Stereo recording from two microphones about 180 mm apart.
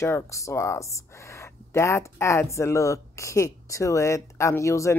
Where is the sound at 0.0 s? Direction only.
15° left (ahead or behind).